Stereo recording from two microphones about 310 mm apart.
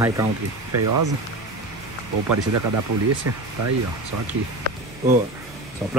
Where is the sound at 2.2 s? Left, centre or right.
Right.